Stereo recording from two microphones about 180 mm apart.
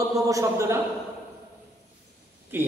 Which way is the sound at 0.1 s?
20° right (ahead or behind).